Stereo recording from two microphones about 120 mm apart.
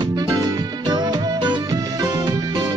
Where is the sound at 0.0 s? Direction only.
35° right (ahead or behind).